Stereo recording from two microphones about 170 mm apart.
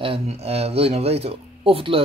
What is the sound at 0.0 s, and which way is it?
Speech, 35° right (ahead or behind).